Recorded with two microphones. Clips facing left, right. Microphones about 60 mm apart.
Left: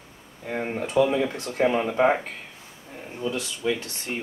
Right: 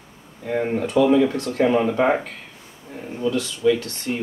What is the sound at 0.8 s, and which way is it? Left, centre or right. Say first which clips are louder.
Speech: right 5 dB; centre.